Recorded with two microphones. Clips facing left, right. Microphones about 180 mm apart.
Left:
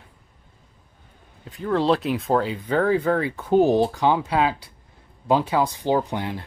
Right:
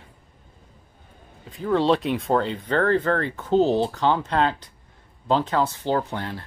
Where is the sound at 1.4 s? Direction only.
Centre (ahead or behind).